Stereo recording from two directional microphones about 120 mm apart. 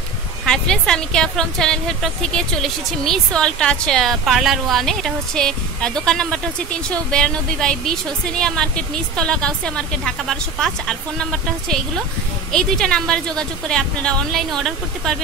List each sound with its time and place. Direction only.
0.5 s a woman's voice: 5° left (ahead or behind)
12.5 s a woman's voice: 5° left (ahead or behind)